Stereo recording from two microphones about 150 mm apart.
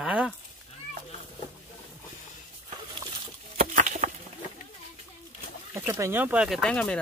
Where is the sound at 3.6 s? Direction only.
55° right (ahead or behind).